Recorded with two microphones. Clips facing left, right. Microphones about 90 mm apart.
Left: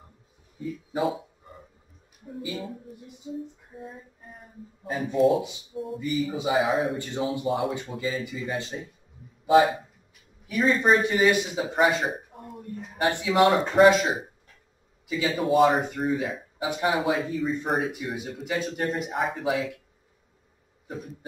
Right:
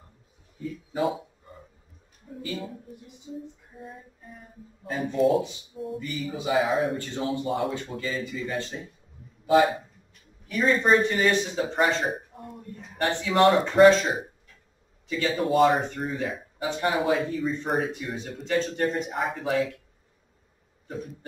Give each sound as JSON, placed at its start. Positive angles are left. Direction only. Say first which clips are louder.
{"t": 0.9, "sound": "speech", "louder": "even", "side_deg": 0}
{"t": 2.5, "sound": "speech", "louder": "even", "side_deg": 0}
{"t": 4.8, "sound": "speech", "louder": "left 1 dB", "side_deg": 0}
{"t": 5.9, "sound": "speech", "louder": "left 7 dB", "side_deg": 20}
{"t": 6.5, "sound": "speech", "louder": "right 1 dB", "side_deg": 0}
{"t": 7.0, "sound": "speech", "louder": "left 1 dB", "side_deg": 15}
{"t": 7.4, "sound": "speech", "louder": "left 1 dB", "side_deg": 0}
{"t": 13.1, "sound": "speech", "louder": "left 1 dB", "side_deg": 15}
{"t": 13.4, "sound": "speech", "louder": "right 1 dB", "side_deg": 0}
{"t": 20.8, "sound": "cough", "louder": "right 1 dB", "side_deg": 5}